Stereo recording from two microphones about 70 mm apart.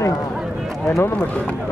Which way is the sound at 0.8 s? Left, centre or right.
Left.